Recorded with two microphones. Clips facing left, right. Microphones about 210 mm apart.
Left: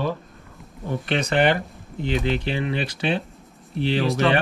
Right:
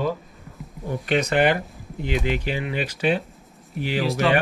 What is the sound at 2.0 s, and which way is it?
Speech, 10° right (ahead or behind).